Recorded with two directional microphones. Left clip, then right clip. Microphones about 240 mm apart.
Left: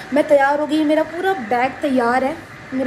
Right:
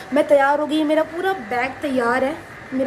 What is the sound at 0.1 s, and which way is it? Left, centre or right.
A woman's voice, centre.